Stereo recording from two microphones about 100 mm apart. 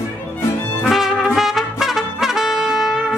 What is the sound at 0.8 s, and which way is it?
Trumpet, centre (ahead or behind).